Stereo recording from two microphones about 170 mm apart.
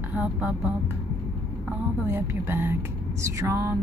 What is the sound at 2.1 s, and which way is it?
Speech, 10° right (ahead or behind).